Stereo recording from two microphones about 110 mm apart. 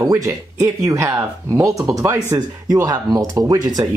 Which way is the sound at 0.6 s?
25° right (ahead or behind).